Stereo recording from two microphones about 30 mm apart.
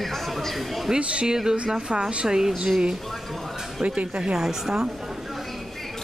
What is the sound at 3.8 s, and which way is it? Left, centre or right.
A woman's voice, centre.